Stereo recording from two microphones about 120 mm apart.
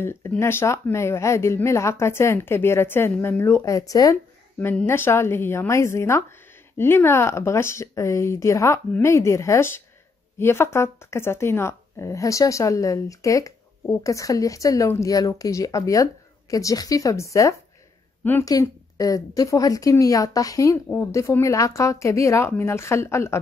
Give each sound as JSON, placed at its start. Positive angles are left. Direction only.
{"t": 0.0, "sound": "speech", "side_deg": 20}
{"t": 4.6, "sound": "speech", "side_deg": 15}